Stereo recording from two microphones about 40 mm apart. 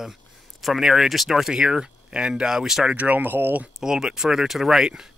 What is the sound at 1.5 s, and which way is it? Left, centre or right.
Speech, centre.